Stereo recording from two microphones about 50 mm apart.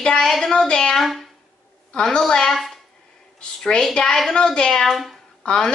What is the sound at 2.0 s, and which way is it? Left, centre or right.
Speech, centre.